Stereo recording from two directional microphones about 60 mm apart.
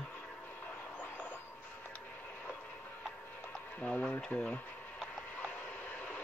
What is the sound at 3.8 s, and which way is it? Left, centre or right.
Speech, left.